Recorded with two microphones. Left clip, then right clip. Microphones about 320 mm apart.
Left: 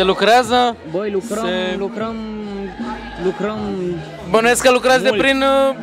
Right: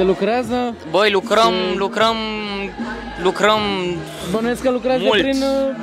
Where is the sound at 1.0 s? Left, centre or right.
Right.